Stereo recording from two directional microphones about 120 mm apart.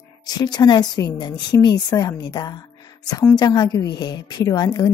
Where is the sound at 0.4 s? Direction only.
35° left (ahead or behind).